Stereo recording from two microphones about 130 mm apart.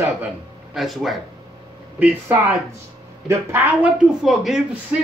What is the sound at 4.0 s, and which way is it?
Speech, 5° right (ahead or behind).